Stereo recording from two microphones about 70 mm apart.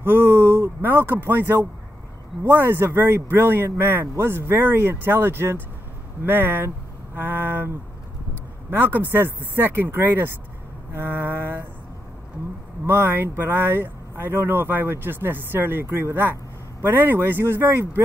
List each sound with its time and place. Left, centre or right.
0.0 s speech: right
12.8 s speech: right